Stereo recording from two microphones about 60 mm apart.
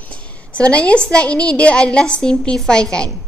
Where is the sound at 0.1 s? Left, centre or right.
Left.